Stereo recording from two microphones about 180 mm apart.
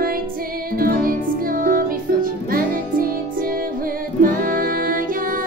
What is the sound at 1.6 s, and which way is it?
Music, 50° right (ahead or behind).